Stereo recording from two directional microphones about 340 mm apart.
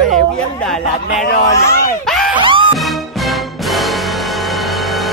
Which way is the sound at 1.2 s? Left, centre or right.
Left.